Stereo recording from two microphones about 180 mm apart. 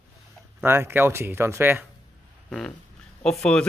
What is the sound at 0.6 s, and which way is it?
A man's voice, 15° right (ahead or behind).